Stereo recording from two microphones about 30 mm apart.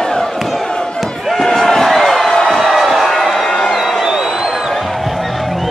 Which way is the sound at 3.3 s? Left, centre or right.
Centre.